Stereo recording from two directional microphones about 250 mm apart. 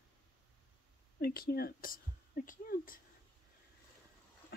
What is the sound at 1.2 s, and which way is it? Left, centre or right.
A woman's voice, left.